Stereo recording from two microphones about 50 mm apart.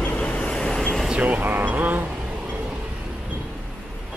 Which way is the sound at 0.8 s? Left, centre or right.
Centre.